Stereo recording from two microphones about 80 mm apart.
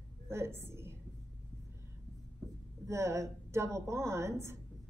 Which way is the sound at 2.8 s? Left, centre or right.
Right.